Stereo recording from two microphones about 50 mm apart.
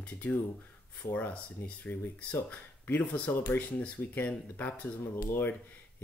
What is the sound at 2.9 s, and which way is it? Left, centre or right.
Speech, left.